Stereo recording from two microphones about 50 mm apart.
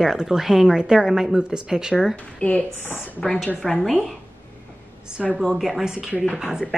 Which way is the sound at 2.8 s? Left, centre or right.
Left.